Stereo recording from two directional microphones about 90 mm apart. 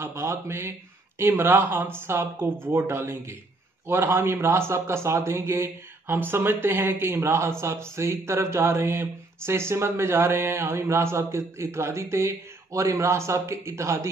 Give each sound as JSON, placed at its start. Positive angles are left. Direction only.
{"t": 0.0, "sound": "speech", "side_deg": -30}